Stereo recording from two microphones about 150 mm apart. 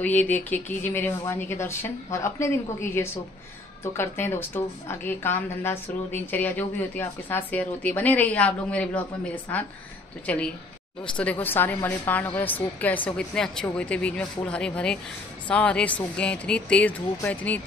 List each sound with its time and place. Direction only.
0.0 s a woman's voice: 10° left (ahead or behind)